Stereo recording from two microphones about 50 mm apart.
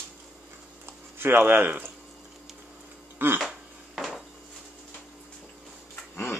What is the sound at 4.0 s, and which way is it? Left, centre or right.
Dishes, centre.